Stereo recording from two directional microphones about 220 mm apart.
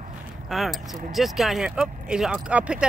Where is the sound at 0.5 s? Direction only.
Centre (ahead or behind).